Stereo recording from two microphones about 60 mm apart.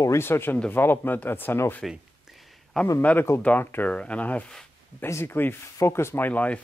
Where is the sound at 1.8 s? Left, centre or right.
Centre.